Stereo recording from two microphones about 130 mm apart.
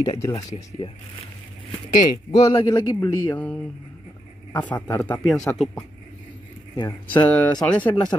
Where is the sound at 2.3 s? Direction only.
25° left (ahead or behind).